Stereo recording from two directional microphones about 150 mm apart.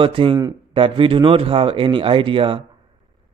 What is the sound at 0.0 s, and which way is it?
A man's voice, 35° right (ahead or behind).